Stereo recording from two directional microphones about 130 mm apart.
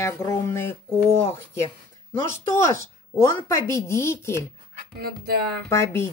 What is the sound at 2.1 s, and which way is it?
Speech, 20° left (ahead or behind).